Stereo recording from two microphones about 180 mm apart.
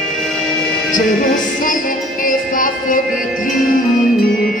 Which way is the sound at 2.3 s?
50° left (ahead or behind).